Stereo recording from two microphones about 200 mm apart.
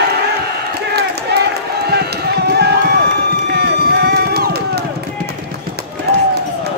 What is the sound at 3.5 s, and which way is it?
Music, 55° right (ahead or behind).